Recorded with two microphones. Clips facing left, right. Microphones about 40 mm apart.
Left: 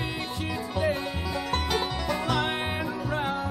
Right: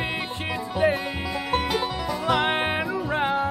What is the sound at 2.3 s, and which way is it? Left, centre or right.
Music, right.